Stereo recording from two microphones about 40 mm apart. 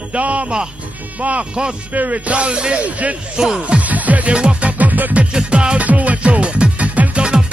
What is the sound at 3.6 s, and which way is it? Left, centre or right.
Music, right.